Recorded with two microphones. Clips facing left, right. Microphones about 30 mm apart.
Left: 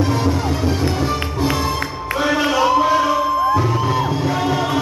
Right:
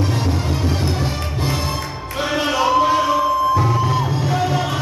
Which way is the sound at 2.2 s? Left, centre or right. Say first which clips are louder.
Left 2 dB; centre.